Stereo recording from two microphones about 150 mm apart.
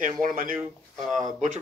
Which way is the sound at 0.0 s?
65° right (ahead or behind).